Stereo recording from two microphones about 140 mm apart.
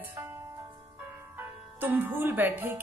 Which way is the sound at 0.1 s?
20° right (ahead or behind).